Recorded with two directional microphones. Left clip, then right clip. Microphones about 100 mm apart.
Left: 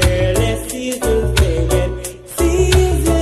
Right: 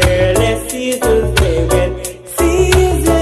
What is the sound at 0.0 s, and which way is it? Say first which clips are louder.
Music: right 5 dB; 20° left (ahead or behind).